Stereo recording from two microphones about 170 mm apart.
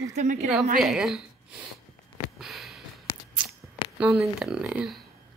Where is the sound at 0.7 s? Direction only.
Centre (ahead or behind).